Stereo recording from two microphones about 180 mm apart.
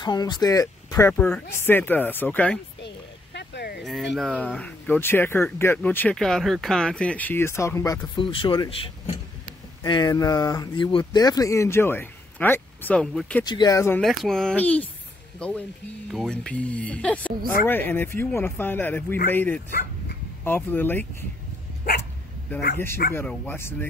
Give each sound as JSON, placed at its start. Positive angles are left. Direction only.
{"t": 0.0, "sound": "speech", "side_deg": 25}
{"t": 1.1, "sound": "speech", "side_deg": 5}
{"t": 3.3, "sound": "a sound", "side_deg": 70}
{"t": 3.8, "sound": "speech", "side_deg": 0}
{"t": 13.5, "sound": "speech", "side_deg": 20}
{"t": 14.0, "sound": "speech", "side_deg": 0}
{"t": 23.1, "sound": "speech", "side_deg": 10}